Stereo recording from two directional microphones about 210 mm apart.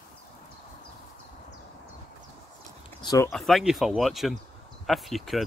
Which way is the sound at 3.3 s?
Centre (ahead or behind).